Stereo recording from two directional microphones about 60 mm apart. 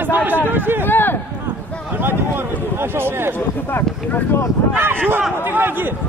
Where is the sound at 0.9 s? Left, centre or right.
Left.